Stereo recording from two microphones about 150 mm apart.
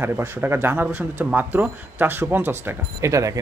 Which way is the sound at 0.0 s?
15° right (ahead or behind).